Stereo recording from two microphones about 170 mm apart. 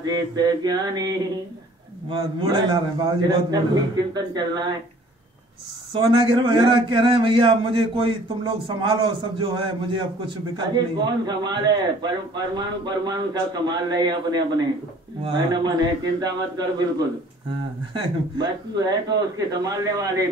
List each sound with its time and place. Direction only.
0.0 s a man's voice: 25° right (ahead or behind)
5.9 s a man's voice: 30° right (ahead or behind)
17.9 s a man's voice: 25° right (ahead or behind)